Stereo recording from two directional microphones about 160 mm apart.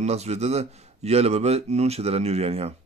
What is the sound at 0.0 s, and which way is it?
Speech, 40° right (ahead or behind).